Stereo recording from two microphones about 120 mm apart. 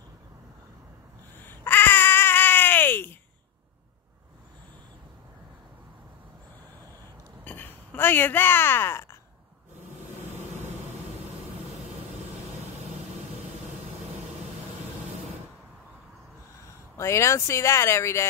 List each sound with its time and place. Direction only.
1.4 s baby cry: 15° left (ahead or behind)
7.4 s speech: 15° left (ahead or behind)
9.8 s a sound: 65° right (ahead or behind)
16.9 s speech: 25° left (ahead or behind)